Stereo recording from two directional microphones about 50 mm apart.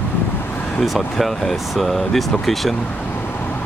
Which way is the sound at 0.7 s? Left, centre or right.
Centre.